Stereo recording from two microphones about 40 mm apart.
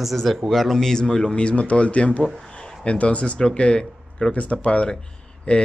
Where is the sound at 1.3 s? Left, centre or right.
Left.